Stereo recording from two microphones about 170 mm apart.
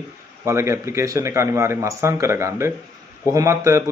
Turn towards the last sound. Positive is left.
turn(degrees=-15)  # may be behind; listen again after turning